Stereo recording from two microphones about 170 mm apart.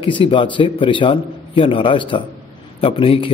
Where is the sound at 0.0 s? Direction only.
30° left (ahead or behind).